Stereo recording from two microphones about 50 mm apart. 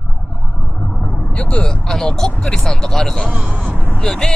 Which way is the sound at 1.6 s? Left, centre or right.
Centre.